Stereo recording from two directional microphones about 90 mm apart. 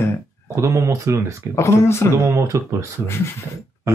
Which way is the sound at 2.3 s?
35° right (ahead or behind).